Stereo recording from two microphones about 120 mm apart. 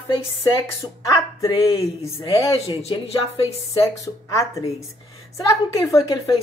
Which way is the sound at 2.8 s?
50° left (ahead or behind).